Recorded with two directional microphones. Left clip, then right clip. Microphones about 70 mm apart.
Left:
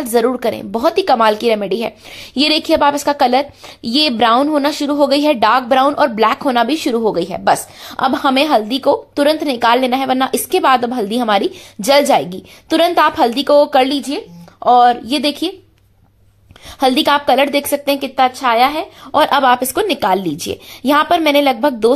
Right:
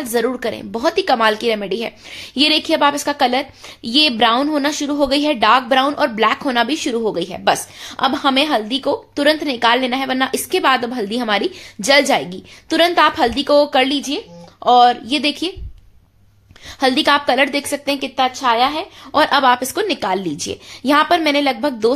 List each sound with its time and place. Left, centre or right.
0.1 s a woman's voice: left
16.8 s a woman's voice: left
19.1 s a woman's voice: left